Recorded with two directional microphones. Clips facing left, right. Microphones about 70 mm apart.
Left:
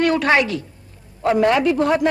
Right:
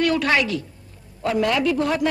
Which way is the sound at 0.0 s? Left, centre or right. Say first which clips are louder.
Left 3 dB; left.